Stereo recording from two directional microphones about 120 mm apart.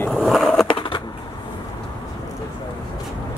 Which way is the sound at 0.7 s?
45° left (ahead or behind).